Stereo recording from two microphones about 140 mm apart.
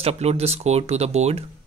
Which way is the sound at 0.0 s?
50° right (ahead or behind).